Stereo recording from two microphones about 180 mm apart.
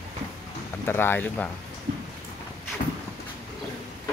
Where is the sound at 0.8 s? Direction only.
10° left (ahead or behind).